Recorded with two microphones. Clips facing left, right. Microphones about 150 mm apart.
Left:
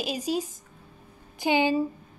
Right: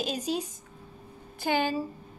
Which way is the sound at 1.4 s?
15° left (ahead or behind).